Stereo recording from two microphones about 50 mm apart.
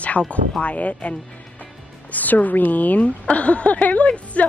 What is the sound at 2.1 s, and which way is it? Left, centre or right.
A woman's voice, left.